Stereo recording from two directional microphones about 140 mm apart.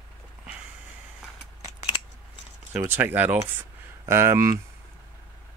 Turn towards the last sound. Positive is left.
turn(degrees=-20)  # may be behind; listen again after turning